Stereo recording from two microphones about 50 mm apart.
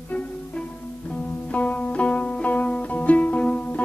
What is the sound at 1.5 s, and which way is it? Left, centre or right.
Music, left.